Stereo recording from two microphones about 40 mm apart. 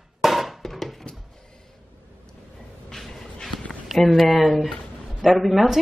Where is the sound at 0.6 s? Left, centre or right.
Centre.